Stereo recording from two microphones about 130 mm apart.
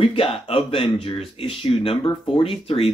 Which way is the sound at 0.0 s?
45° left (ahead or behind).